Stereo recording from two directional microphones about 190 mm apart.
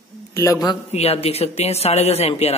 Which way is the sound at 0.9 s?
35° left (ahead or behind).